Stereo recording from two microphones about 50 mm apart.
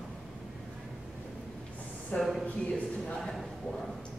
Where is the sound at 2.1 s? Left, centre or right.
Left.